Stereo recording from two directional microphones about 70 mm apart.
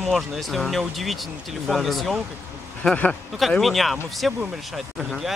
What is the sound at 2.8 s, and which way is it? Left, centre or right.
Speech, centre.